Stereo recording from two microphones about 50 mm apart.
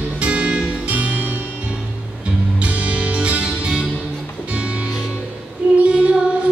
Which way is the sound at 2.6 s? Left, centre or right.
Right.